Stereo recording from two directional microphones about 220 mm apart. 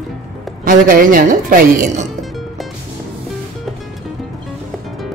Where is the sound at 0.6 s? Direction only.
40° right (ahead or behind).